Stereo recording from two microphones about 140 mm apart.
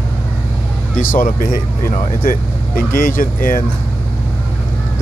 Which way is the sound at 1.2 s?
80° left.